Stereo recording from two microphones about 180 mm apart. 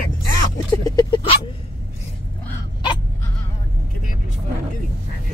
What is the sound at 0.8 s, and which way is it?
Vehicle, 25° left (ahead or behind).